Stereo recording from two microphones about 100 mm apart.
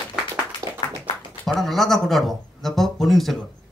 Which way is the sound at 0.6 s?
35° right (ahead or behind).